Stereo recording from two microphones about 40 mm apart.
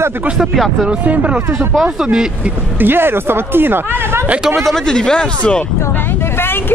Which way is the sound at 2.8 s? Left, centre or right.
Right.